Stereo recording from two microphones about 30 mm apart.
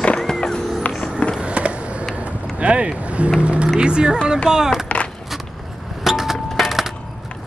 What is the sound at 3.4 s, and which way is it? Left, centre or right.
Music, right.